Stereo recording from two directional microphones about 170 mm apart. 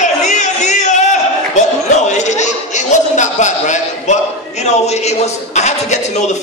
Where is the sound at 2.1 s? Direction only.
45° left (ahead or behind).